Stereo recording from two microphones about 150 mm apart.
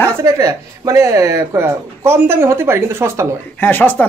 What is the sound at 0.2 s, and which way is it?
Speech, 20° right (ahead or behind).